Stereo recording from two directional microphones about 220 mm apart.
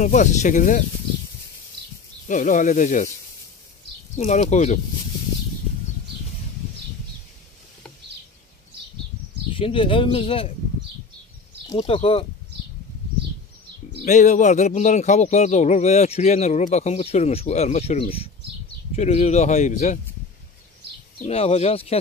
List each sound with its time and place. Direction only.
0.0 s speech: 35° left (ahead or behind)
2.2 s speech: 35° left (ahead or behind)
4.2 s speech: 35° left (ahead or behind)
9.5 s speech: 25° left (ahead or behind)
11.7 s speech: 25° left (ahead or behind)
14.0 s speech: 35° left (ahead or behind)
21.3 s speech: 30° left (ahead or behind)